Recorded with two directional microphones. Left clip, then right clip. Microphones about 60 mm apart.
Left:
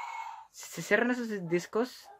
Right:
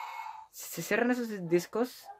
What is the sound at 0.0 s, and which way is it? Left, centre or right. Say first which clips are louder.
Speech: left 1 dB; left.